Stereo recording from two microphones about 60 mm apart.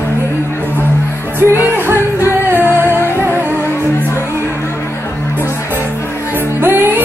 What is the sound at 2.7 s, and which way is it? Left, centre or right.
Music, right.